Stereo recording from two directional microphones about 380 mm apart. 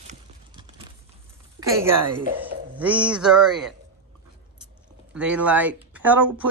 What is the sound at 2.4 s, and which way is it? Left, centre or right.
Speech, centre.